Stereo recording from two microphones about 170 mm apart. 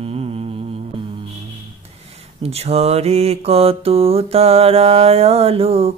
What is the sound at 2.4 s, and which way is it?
Mantra, 35° right (ahead or behind).